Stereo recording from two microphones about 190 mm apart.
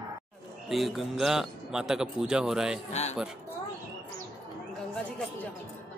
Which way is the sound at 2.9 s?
35° left (ahead or behind).